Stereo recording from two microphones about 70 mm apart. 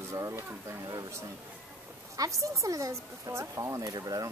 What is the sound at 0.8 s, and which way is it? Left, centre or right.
A man's voice, right.